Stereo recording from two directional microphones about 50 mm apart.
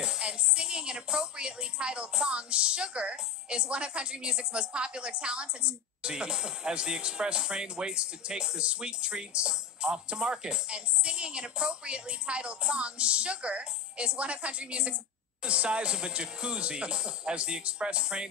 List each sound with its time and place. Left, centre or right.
0.0 s speech: centre